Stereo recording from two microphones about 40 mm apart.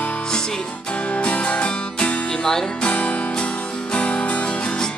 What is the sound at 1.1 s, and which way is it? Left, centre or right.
Music, left.